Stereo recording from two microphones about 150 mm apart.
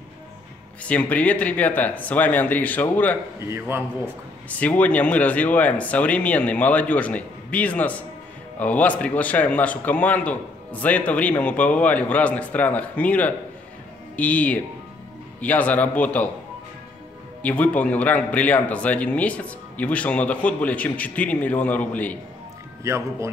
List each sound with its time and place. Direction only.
0.8 s speech: 10° left (ahead or behind)
3.3 s speech: 15° right (ahead or behind)
4.0 s speech: 10° left (ahead or behind)
17.4 s speech: 10° left (ahead or behind)
22.8 s speech: 20° right (ahead or behind)